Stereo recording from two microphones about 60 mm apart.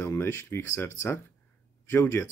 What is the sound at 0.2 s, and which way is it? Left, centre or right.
Speech, left.